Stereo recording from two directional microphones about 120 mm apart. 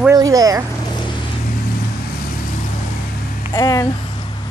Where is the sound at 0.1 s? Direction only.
30° right (ahead or behind).